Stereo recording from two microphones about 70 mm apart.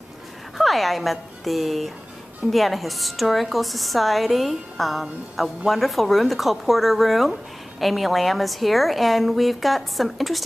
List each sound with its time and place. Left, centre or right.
0.6 s a woman's voice: centre